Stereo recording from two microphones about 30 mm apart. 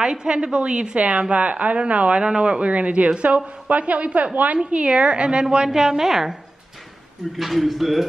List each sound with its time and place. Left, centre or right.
0.0 s a woman's voice: right
2.1 s a woman's voice: right
4.6 s a woman's voice: right
5.7 s a woman's voice: centre
7.3 s speech: centre